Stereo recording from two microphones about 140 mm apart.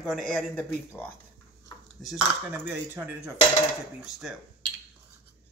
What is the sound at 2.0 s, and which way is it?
Speech, centre (ahead or behind).